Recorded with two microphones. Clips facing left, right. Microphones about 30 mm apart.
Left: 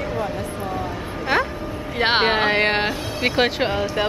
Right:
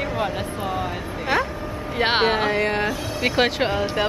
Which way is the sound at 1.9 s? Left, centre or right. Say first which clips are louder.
Left 1 dB; centre.